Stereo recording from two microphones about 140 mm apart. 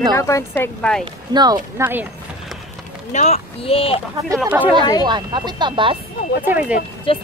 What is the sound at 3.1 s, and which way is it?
Speech, 55° left (ahead or behind).